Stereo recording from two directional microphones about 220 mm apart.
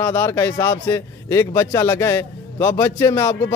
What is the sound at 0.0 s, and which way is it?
Speech, 10° left (ahead or behind).